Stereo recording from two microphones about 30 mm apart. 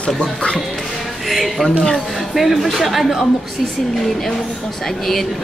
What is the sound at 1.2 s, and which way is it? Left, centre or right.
Speech, centre.